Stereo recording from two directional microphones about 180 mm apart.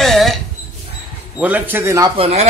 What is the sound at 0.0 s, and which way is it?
Dog, centre (ahead or behind).